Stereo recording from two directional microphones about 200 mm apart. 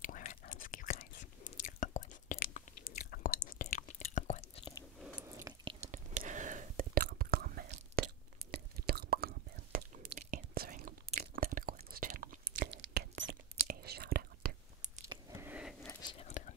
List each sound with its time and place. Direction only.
0.0 s whispering: 40° left (ahead or behind)
4.0 s chewing: 35° left (ahead or behind)
5.5 s chewing: 15° right (ahead or behind)
5.8 s whispering: 35° right (ahead or behind)
8.0 s crunch: 50° right (ahead or behind)
8.5 s whispering: 50° right (ahead or behind)
12.7 s a sound: 65° right (ahead or behind)
13.2 s whispering: 50° right (ahead or behind)
15.4 s a sound: 5° right (ahead or behind)
16.0 s whispering: 25° left (ahead or behind)